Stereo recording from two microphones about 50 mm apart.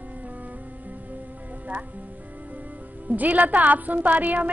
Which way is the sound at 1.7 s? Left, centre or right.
Right.